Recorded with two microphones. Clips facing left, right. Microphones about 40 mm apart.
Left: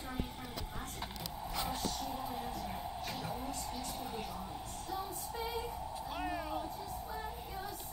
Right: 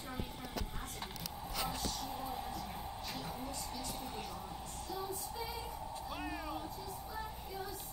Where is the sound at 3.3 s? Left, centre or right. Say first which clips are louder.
Left 3 dB; centre.